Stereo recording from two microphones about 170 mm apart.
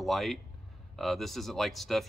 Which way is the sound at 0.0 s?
Centre (ahead or behind).